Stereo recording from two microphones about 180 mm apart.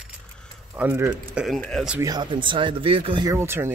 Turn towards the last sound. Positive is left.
turn(degrees=-15)  # may be behind; listen again after turning